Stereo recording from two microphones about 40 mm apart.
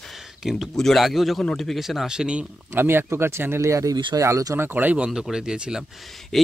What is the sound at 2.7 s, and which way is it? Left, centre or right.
Speech, right.